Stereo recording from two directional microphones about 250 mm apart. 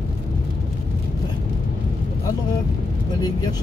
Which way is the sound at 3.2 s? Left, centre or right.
Centre.